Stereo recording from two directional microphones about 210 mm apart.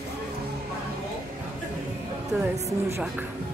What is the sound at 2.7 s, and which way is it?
Speech, 15° right (ahead or behind).